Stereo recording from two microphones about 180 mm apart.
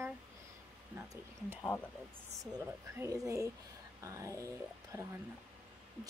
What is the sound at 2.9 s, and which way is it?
Speech, 15° right (ahead or behind).